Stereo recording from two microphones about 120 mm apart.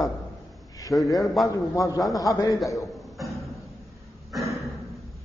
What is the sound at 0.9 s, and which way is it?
Speech, centre (ahead or behind).